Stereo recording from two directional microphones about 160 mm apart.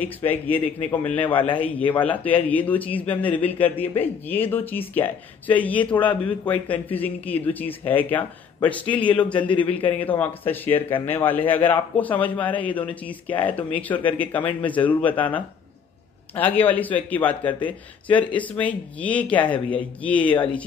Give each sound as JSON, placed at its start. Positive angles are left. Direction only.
{"t": 0.0, "sound": "speech", "side_deg": 10}
{"t": 9.5, "sound": "a man's voice", "side_deg": 35}
{"t": 9.9, "sound": "speech", "side_deg": 10}